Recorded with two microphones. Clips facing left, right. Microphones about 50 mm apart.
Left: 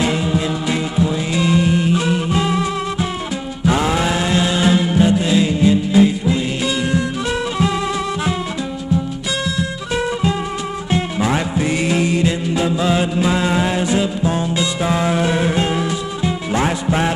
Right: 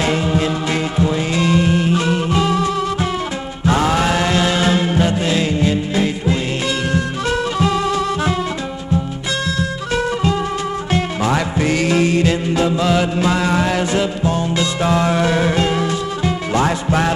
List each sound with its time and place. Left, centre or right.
0.4 s music: right
2.4 s music: left
3.6 s music: right
7.3 s music: left
11.9 s music: right
12.8 s music: left
14.9 s music: left
15.2 s music: right
16.6 s music: left